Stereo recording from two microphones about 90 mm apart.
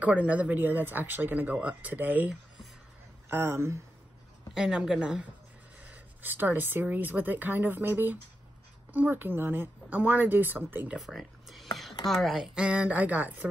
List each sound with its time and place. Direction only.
0.0 s speech: 15° right (ahead or behind)
4.6 s speech: 5° right (ahead or behind); by 11.0 s 20° right (ahead or behind)
11.0 s a sound: centre (ahead or behind)
12.1 s speech: centre (ahead or behind)
12.5 s speech: 10° right (ahead or behind)